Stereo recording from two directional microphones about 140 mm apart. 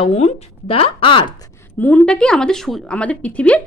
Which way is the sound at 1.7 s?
10° left (ahead or behind).